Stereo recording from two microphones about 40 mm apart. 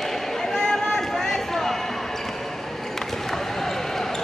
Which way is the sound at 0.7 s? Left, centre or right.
Centre.